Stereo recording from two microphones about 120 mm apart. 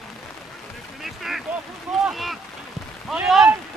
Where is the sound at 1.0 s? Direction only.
Centre (ahead or behind).